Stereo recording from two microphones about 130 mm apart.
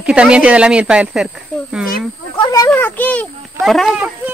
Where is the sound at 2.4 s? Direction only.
25° left (ahead or behind).